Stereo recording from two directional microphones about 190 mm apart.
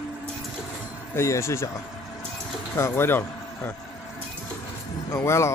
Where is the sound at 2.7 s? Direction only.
15° left (ahead or behind).